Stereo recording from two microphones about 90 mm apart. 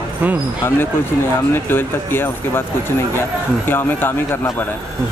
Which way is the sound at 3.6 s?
25° left (ahead or behind).